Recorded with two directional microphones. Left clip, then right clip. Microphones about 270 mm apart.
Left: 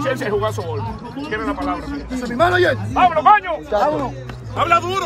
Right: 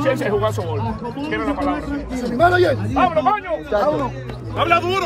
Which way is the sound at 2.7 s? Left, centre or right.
Centre.